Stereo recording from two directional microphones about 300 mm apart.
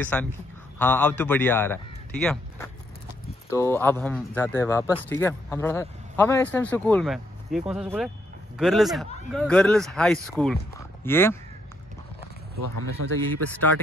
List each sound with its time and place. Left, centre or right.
0.0 s speech: centre
13.0 s a man's voice: right